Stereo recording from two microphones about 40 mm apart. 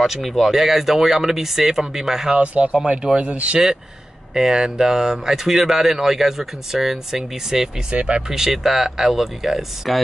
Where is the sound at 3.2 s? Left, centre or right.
Right.